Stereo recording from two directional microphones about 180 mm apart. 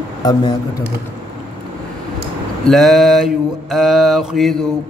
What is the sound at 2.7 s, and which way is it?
Mantra, centre (ahead or behind).